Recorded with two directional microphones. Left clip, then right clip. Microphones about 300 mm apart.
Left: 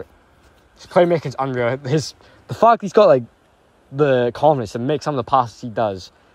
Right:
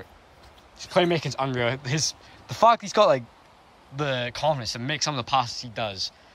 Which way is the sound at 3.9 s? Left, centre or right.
Centre.